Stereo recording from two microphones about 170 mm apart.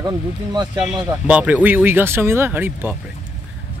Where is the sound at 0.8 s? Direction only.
5° right (ahead or behind).